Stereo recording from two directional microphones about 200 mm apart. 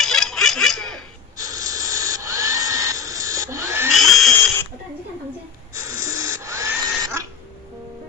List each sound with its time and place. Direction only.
0.0 s a sound: centre (ahead or behind)
1.3 s tools: 15° right (ahead or behind)
3.9 s drill: centre (ahead or behind)
6.0 s printer: 15° right (ahead or behind)